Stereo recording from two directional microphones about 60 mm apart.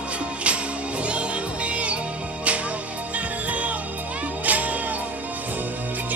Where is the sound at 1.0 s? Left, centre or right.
Centre.